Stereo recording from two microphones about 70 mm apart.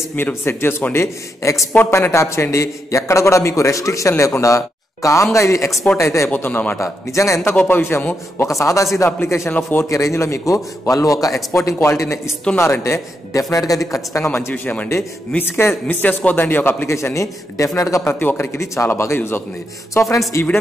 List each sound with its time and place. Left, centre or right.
0.3 s a man's voice: left
6.3 s a man's voice: left
6.8 s a man's voice: left
7.5 s a man's voice: left
8.5 s a man's voice: left
9.8 s a man's voice: left
14.1 s speech: left
14.5 s a man's voice: left
15.3 s a man's voice: left
16.8 s a man's voice: left
18.2 s speech: left
18.6 s speech: left
19.9 s a man's voice: left